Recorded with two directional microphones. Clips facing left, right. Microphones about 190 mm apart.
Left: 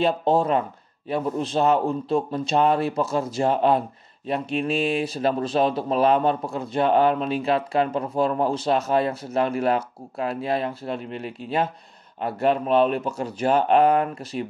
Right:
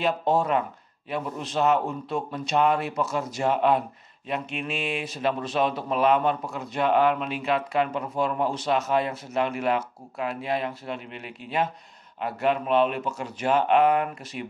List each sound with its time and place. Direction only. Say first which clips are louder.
0.0 s speech: left 3 dB; 30° left (ahead or behind)